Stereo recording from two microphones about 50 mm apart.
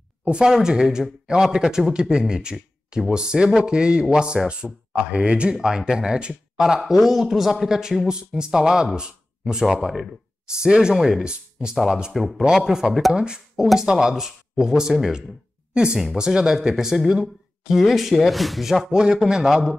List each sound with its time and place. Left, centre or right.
0.2 s speech: centre
11.2 s speech: centre
12.1 s speech: centre
18.9 s speech: centre